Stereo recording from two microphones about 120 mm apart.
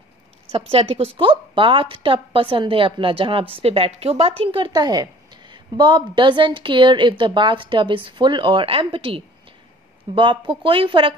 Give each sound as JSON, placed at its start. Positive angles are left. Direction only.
{"t": 0.5, "sound": "a woman's voice", "side_deg": -55}
{"t": 4.5, "sound": "a woman's voice", "side_deg": -40}